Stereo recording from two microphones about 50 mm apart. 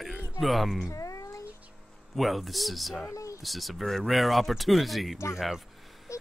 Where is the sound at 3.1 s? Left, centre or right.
Left.